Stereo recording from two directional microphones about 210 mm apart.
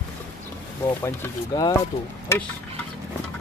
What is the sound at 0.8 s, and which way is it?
Speech, 15° left (ahead or behind).